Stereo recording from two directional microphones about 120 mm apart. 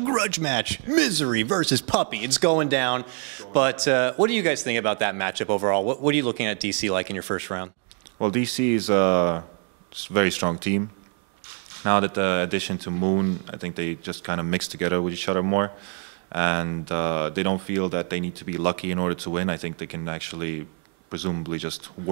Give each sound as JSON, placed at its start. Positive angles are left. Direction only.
{"t": 0.0, "sound": "speech", "side_deg": -15}
{"t": 11.8, "sound": "speech", "side_deg": -15}